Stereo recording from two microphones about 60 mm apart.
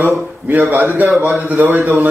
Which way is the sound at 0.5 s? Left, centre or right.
Right.